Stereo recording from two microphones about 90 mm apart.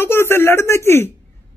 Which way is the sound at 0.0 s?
25° left (ahead or behind).